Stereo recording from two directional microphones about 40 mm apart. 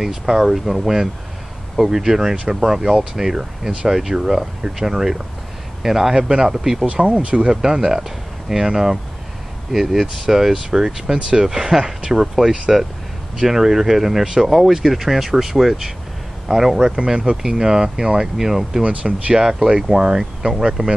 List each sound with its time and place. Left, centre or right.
0.0 s speech: centre
6.9 s speech: right
18.8 s speech: right
19.3 s speech: centre